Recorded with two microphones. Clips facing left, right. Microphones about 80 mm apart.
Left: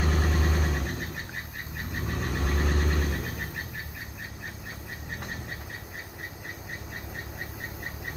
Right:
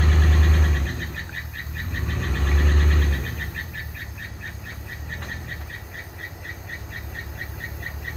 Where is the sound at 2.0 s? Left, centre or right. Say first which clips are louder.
Right 1 dB; centre.